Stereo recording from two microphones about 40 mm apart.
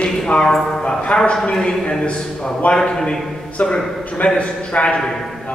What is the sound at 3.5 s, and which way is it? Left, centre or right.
A man's voice, left.